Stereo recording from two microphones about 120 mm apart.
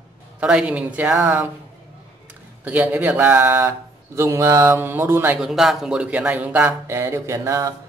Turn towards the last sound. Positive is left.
turn(degrees=-25)  # may be behind; listen again after turning